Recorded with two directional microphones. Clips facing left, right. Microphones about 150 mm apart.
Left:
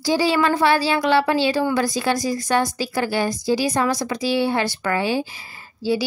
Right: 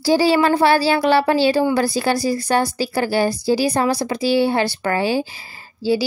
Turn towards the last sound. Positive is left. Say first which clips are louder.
# right 3 dB
turn(degrees=-30)  # may be behind; listen again after turning